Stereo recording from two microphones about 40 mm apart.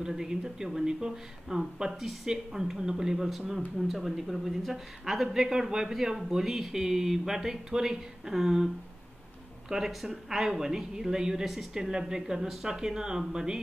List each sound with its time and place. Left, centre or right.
0.0 s speech: centre
9.7 s speech: centre